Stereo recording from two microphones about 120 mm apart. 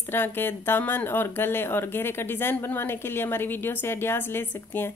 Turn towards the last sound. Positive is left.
turn(degrees=20)  # may be behind; listen again after turning